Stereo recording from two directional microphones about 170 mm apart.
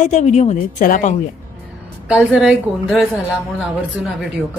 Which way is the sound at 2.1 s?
5° right (ahead or behind).